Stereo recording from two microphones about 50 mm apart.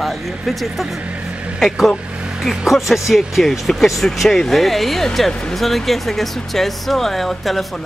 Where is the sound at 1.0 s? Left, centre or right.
Right.